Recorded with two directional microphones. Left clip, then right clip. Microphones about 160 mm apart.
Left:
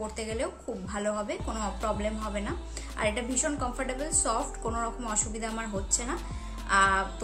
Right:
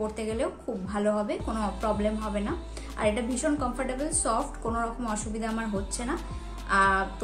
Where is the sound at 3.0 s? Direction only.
20° left (ahead or behind).